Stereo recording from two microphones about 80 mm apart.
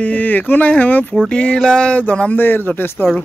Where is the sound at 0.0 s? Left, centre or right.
Centre.